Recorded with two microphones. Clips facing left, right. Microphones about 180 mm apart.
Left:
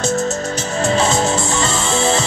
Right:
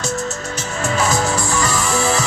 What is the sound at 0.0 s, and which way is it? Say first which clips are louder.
Music: left 5 dB; 25° left (ahead or behind).